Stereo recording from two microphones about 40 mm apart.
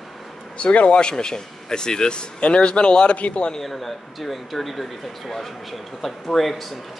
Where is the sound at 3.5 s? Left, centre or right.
Centre.